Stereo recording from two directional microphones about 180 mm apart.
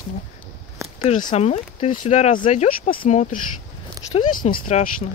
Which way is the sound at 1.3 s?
35° left (ahead or behind).